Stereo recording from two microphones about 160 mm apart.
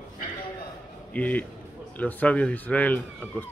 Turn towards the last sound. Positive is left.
turn(degrees=10)  # may be behind; listen again after turning